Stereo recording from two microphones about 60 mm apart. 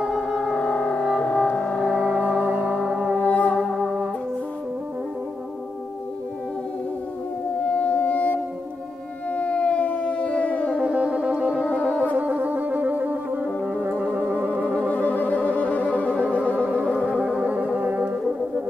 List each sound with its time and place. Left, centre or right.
0.0 s music: centre
0.6 s music: centre
2.1 s music: right
3.3 s music: left
3.5 s music: centre
7.6 s music: left
9.3 s siren: left
10.7 s music: right
14.6 s music: left
17.1 s music: centre